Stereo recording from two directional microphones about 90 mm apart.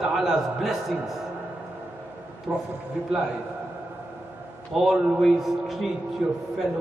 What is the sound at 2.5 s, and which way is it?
Speech, 25° right (ahead or behind).